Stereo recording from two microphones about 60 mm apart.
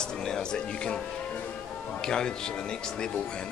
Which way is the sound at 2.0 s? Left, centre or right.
Centre.